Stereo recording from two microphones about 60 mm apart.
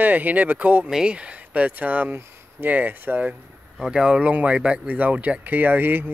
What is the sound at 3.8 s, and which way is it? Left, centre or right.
Speech, centre.